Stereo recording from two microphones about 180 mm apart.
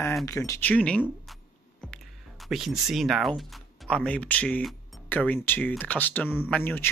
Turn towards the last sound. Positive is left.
turn(degrees=10)  # may be behind; listen again after turning